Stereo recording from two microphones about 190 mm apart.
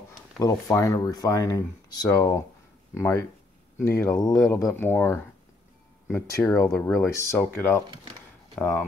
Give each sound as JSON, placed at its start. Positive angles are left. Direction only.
{"t": 0.4, "sound": "speech", "side_deg": 20}